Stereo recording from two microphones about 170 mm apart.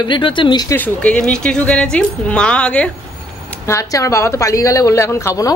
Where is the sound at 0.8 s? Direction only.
5° left (ahead or behind).